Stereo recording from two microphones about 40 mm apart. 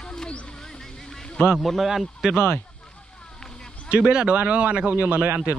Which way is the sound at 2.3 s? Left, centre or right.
Left.